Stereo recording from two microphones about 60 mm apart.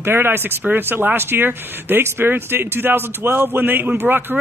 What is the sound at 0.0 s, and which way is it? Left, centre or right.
Speech, right.